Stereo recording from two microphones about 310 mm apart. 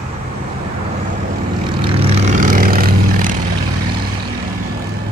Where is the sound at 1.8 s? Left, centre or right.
Centre.